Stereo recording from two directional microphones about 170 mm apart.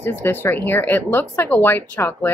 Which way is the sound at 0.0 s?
10° left (ahead or behind).